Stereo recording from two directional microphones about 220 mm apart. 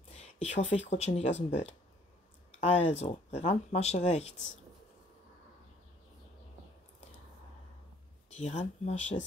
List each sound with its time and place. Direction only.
0.1 s a sound: 30° left (ahead or behind)
0.7 s speech: 30° left (ahead or behind)
8.3 s speech: 30° left (ahead or behind)